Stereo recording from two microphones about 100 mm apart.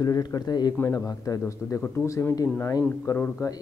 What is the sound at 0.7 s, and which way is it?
Speech, 25° left (ahead or behind).